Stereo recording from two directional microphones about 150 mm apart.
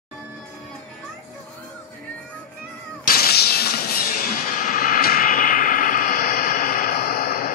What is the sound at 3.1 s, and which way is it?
Music, 90° left.